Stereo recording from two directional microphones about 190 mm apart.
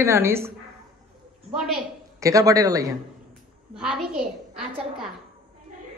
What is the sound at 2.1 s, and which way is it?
Speech, 15° right (ahead or behind).